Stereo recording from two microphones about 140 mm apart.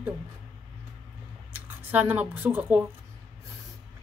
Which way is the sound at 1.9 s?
10° right (ahead or behind).